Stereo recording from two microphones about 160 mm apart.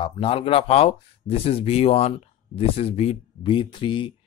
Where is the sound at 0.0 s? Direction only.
35° left (ahead or behind).